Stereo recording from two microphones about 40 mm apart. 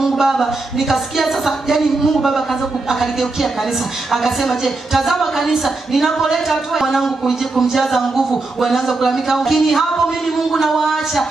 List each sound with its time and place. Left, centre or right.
0.2 s speech: centre
2.9 s speech: centre